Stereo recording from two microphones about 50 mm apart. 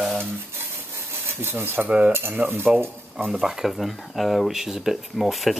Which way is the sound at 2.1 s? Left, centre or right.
Right.